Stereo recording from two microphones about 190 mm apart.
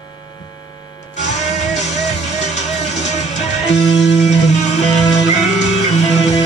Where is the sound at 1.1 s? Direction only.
35° left (ahead or behind).